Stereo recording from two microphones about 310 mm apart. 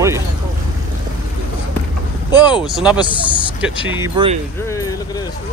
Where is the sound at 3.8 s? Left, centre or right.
Centre.